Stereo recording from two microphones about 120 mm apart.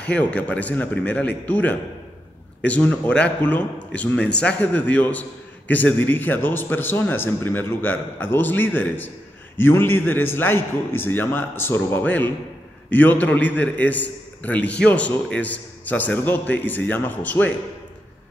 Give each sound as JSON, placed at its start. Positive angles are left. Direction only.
{"t": 0.0, "sound": "a man's voice", "side_deg": 10}